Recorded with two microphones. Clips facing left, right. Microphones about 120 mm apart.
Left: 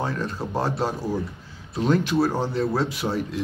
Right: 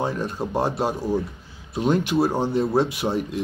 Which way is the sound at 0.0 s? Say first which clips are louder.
Right 2 dB; 15° right (ahead or behind).